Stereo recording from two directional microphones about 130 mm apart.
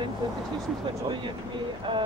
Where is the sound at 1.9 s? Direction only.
40° right (ahead or behind).